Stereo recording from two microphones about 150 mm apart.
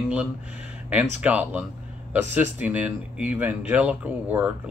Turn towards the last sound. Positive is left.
turn(degrees=-10)  # may be behind; listen again after turning